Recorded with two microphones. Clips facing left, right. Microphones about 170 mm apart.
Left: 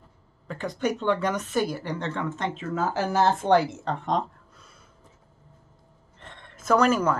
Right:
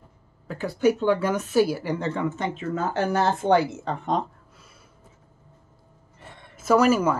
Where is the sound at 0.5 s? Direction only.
5° right (ahead or behind).